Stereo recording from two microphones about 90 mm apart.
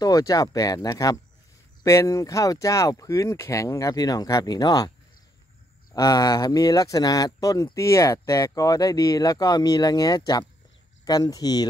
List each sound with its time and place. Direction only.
0.0 s speech: 40° left (ahead or behind)
5.9 s speech: 45° left (ahead or behind)